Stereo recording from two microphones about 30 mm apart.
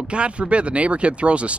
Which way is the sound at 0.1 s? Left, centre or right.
Right.